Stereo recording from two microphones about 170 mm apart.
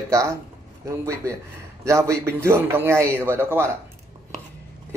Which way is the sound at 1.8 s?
15° right (ahead or behind).